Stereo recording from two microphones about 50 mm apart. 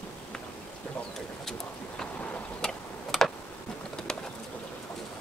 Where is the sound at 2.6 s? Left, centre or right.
Centre.